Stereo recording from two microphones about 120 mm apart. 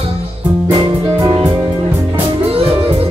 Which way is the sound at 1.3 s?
50° right (ahead or behind).